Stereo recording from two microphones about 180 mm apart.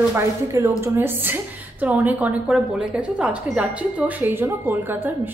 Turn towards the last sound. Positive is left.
turn(degrees=-10)  # may be behind; listen again after turning